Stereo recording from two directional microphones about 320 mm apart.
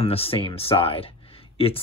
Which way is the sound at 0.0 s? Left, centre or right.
Centre.